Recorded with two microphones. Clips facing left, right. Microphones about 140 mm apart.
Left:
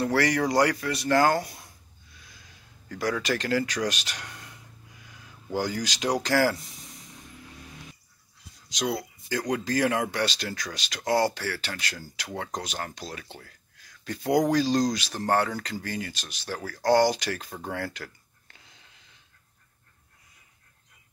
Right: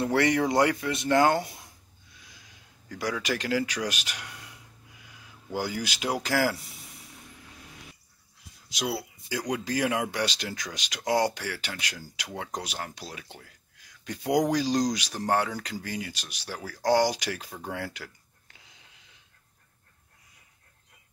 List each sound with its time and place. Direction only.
0.0 s speech: 20° right (ahead or behind)
2.9 s speech: 10° right (ahead or behind)
8.6 s speech: 5° right (ahead or behind)
17.6 s a sound: 10° right (ahead or behind)